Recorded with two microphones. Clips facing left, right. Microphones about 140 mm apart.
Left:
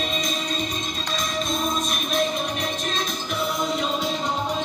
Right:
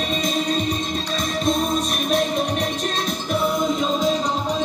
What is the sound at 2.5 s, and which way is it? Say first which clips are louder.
Music: right 4 dB; 35° right (ahead or behind).